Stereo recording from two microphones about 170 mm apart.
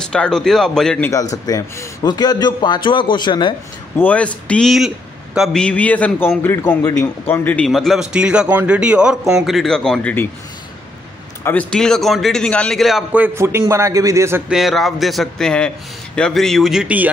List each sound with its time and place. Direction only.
0.0 s a man's voice: 5° left (ahead or behind)
1.3 s a man's voice: 20° left (ahead or behind)
4.0 s a man's voice: 10° left (ahead or behind)
11.4 s a man's voice: 5° left (ahead or behind); by 14.4 s 15° right (ahead or behind)
14.5 s a man's voice: centre (ahead or behind)